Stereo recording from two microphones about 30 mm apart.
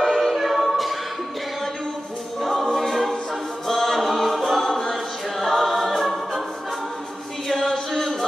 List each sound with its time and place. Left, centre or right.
0.0 s a capella: centre
2.4 s choir: centre
7.5 s music: centre